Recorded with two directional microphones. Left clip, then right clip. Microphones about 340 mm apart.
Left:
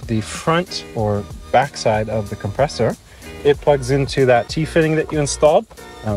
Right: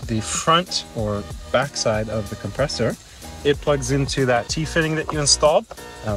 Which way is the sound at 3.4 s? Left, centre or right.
Centre.